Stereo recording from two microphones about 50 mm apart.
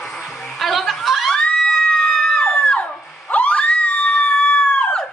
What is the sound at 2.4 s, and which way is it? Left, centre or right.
Screaming, left.